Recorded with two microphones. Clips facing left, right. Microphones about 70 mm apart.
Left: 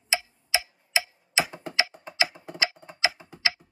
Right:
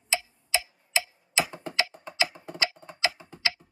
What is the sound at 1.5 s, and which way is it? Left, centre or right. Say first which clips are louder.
Computer keyboard: left 1 dB; centre.